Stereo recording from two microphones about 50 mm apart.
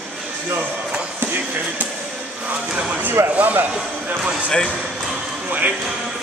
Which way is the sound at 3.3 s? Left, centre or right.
Right.